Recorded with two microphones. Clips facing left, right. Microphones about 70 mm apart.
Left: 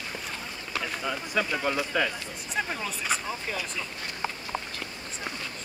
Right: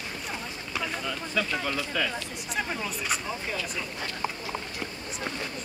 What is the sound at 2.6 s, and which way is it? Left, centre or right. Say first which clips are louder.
Speech: left 1 dB; centre.